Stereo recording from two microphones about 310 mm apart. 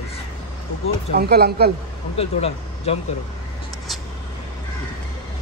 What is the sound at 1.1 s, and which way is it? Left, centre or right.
Speech, right.